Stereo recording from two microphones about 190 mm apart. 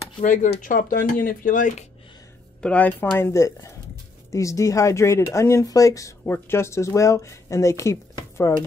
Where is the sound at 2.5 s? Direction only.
5° left (ahead or behind).